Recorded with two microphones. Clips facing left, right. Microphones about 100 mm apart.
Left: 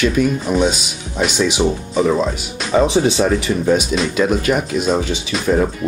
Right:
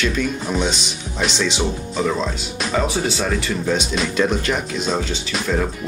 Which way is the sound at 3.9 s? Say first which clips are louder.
Left 3 dB; 5° left (ahead or behind).